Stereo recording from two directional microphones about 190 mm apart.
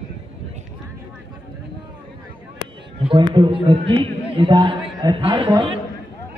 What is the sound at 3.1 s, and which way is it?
A man's voice, 25° right (ahead or behind).